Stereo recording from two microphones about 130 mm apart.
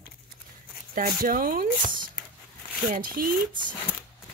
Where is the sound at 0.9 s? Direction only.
90° right.